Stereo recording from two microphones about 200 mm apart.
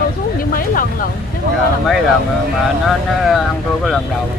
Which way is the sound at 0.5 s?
45° left (ahead or behind).